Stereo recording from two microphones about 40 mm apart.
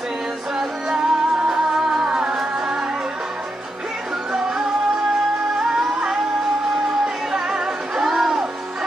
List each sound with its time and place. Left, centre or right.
0.6 s music: centre
4.3 s music: centre